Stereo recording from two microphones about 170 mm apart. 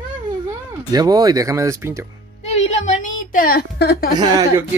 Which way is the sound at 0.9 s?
20° right (ahead or behind).